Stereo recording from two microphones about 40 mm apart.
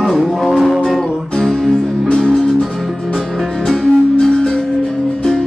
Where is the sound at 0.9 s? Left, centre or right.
Centre.